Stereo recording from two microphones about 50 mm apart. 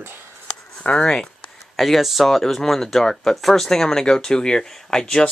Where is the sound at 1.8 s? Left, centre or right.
Centre.